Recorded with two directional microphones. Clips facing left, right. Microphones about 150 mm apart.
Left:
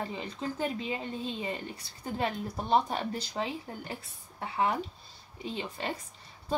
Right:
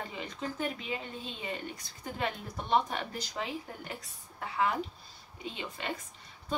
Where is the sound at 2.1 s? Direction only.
30° left (ahead or behind).